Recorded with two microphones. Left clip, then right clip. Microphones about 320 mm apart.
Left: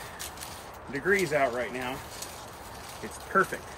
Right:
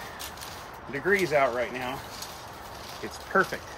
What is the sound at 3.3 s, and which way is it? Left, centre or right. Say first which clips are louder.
Speech: right 1 dB; centre.